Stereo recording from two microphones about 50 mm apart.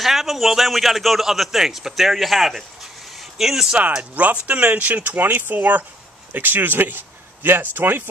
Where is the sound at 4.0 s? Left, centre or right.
Right.